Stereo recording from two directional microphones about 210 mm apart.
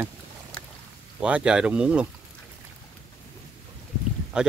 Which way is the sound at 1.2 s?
5° right (ahead or behind).